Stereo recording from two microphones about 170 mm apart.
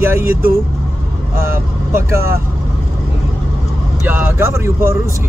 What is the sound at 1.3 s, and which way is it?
Speech, 15° right (ahead or behind).